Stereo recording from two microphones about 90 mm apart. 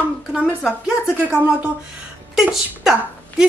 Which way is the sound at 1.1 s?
10° right (ahead or behind).